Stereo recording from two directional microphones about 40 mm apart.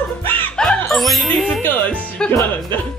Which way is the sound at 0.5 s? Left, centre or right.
Left.